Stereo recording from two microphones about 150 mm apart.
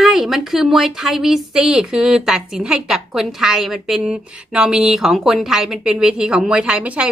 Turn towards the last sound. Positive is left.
turn(degrees=-10)  # may be behind; listen again after turning